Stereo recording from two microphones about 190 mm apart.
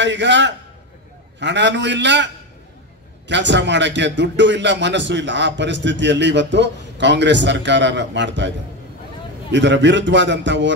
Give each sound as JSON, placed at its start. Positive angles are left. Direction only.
{"t": 0.0, "sound": "a man's voice", "side_deg": -70}